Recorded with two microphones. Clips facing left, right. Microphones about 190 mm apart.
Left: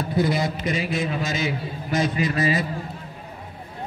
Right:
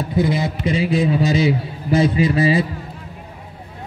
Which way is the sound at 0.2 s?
20° right (ahead or behind).